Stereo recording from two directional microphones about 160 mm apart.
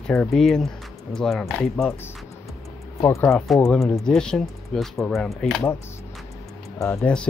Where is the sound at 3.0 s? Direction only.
15° left (ahead or behind).